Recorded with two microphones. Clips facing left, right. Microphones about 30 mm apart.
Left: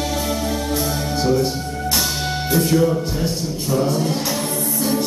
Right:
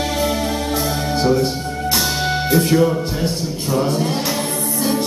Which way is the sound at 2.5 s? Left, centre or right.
Right.